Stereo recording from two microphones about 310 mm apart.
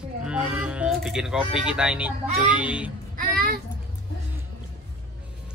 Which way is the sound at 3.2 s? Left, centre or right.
Right.